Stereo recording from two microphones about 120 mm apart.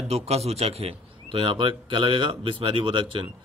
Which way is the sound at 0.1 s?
60° right (ahead or behind).